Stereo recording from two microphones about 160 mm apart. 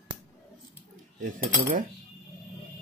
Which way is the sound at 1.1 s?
55° right (ahead or behind).